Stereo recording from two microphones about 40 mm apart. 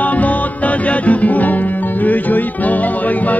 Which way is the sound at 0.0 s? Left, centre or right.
Left.